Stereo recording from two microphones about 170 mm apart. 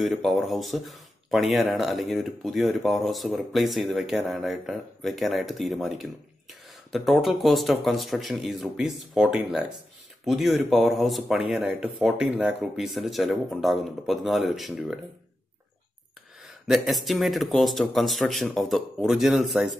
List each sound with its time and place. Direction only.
0.0 s speech: centre (ahead or behind)
16.4 s speech: centre (ahead or behind)